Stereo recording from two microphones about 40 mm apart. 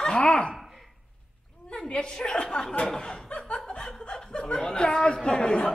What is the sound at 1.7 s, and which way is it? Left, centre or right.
A woman's voice, left.